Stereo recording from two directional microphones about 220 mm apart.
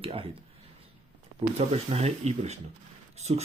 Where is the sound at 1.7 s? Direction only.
30° right (ahead or behind).